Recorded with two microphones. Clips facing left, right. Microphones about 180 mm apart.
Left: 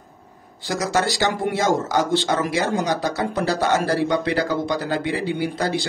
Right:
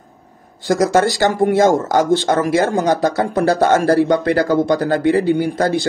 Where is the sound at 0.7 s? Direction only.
50° right (ahead or behind).